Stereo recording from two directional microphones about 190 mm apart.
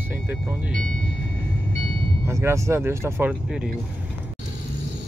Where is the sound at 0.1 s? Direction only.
10° right (ahead or behind).